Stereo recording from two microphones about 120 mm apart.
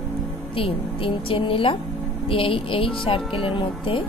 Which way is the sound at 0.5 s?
50° left (ahead or behind).